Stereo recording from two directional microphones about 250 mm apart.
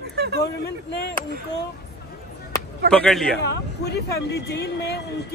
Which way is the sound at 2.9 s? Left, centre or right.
Centre.